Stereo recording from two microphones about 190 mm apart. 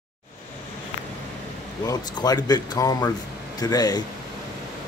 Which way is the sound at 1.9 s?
20° left (ahead or behind).